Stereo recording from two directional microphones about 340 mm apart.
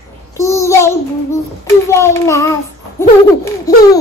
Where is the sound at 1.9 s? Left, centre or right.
Centre.